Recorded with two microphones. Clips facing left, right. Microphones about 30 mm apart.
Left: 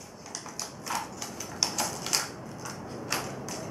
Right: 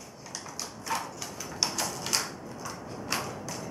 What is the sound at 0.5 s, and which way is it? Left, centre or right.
Typewriter, centre.